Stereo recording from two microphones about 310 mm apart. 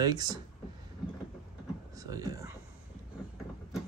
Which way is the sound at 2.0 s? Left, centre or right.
Centre.